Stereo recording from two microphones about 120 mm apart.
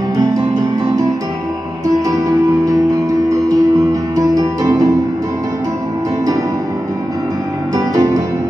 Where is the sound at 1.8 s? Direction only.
30° right (ahead or behind).